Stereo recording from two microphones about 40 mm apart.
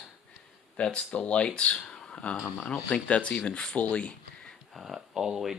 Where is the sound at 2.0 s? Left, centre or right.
Left.